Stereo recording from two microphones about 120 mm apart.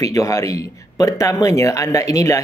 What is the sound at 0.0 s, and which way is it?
Speech, 25° left (ahead or behind).